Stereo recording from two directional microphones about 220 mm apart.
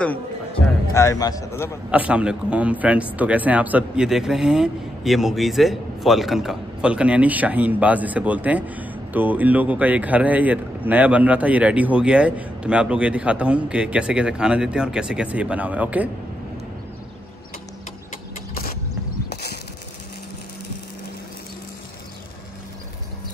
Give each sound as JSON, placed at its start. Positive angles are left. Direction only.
{"t": 0.9, "sound": "a man's voice", "side_deg": 15}
{"t": 1.9, "sound": "speech", "side_deg": -5}
{"t": 18.5, "sound": "mechanisms", "side_deg": 40}